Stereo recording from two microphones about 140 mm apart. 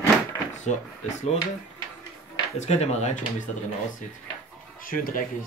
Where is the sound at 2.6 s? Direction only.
50° left (ahead or behind).